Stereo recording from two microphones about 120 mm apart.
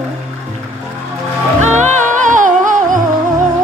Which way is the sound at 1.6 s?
85° right.